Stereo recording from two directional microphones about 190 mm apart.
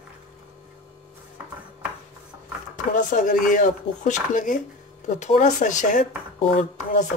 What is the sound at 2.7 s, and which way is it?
Speech, 40° left (ahead or behind).